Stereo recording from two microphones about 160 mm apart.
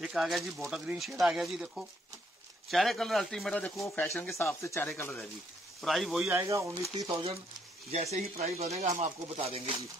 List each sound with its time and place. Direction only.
0.0 s speech: centre (ahead or behind)
4.1 s speech: centre (ahead or behind)
4.6 s speech: 15° left (ahead or behind)
5.8 s speech: centre (ahead or behind)
6.3 s speech: 20° right (ahead or behind)
7.9 s speech: 40° right (ahead or behind)